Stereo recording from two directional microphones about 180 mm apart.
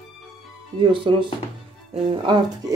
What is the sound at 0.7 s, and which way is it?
Speech, 30° right (ahead or behind).